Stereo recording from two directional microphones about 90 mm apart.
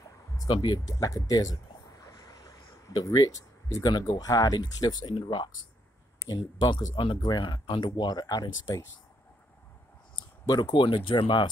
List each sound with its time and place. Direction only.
0.4 s speech: 50° left (ahead or behind)
0.9 s speech: 40° left (ahead or behind)
2.0 s a sound: 45° left (ahead or behind)
3.9 s speech: 45° left (ahead or behind)
10.4 s speech: 55° left (ahead or behind)